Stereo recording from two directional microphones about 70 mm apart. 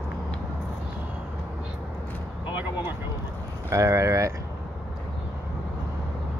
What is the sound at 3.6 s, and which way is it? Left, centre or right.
Speech, right.